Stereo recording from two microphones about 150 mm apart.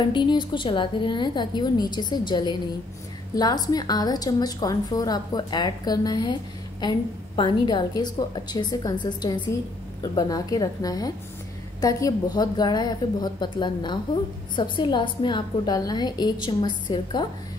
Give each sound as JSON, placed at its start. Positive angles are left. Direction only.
{"t": 0.0, "sound": "a woman's voice", "side_deg": 30}